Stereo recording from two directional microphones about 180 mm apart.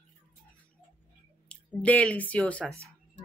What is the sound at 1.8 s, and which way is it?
Speech, 10° left (ahead or behind).